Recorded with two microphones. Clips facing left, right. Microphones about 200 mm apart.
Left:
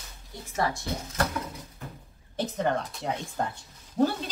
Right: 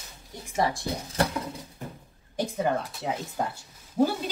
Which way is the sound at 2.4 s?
5° right (ahead or behind).